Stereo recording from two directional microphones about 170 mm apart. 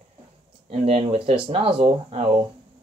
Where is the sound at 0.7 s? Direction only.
35° right (ahead or behind).